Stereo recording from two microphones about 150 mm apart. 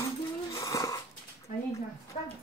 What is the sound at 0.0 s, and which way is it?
Wheeze, 20° left (ahead or behind).